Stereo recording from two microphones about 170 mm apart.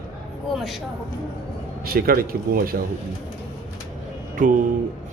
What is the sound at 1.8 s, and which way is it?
Speech, 60° right (ahead or behind).